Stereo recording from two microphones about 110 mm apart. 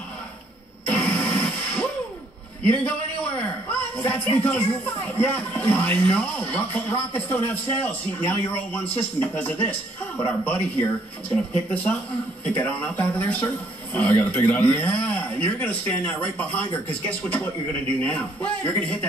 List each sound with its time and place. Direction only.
0.8 s music: 10° left (ahead or behind)
2.6 s a man's voice: 10° left (ahead or behind)
18.0 s a man's voice: 15° left (ahead or behind)